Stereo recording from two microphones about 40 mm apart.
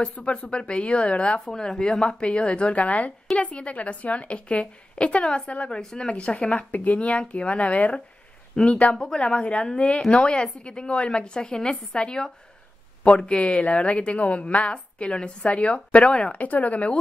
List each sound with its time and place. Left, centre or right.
0.0 s a woman's voice: left
1.4 s a woman's voice: centre
6.7 s a woman's voice: left
8.9 s a woman's voice: left
16.3 s a woman's voice: left